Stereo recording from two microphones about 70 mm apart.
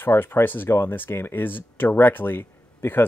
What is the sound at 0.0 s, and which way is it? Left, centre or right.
Speech, left.